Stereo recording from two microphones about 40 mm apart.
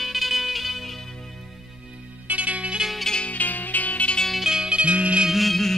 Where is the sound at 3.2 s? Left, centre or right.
Left.